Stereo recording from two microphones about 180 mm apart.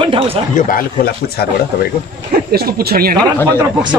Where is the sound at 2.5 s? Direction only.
60° right (ahead or behind).